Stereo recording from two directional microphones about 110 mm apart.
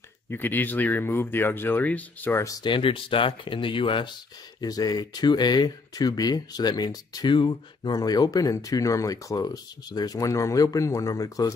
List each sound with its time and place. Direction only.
0.3 s speech: 20° left (ahead or behind)
2.4 s speech: 30° left (ahead or behind)
2.7 s speech: 55° left (ahead or behind)
4.6 s speech: 35° left (ahead or behind)